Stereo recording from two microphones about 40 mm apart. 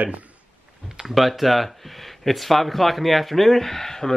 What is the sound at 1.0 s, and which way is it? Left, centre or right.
Speech, centre.